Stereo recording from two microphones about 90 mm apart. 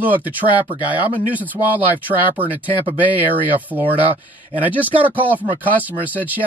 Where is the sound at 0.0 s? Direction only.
20° right (ahead or behind).